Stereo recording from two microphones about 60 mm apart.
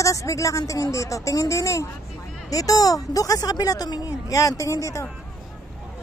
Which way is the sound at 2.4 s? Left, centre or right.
Left.